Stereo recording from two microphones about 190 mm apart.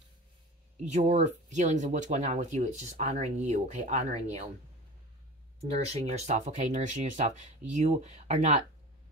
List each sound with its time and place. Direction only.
0.8 s speech: 35° right (ahead or behind)
5.7 s speech: 35° right (ahead or behind)